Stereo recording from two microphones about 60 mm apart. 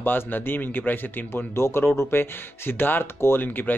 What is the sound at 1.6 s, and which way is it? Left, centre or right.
Speech, left.